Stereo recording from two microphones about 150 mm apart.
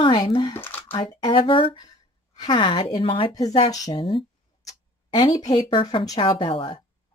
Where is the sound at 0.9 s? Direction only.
30° left (ahead or behind).